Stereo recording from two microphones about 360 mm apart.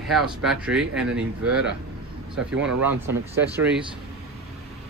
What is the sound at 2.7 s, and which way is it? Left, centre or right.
Speech, right.